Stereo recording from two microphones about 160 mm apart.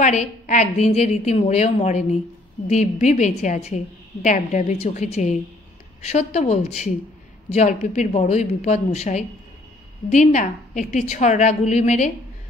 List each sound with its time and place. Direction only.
0.0 s a woman's voice: 50° left (ahead or behind)